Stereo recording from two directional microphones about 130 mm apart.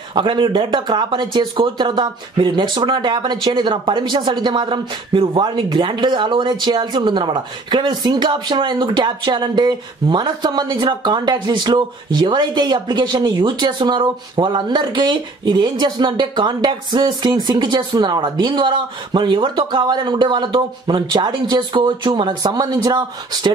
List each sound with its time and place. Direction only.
0.1 s speech: 40° right (ahead or behind)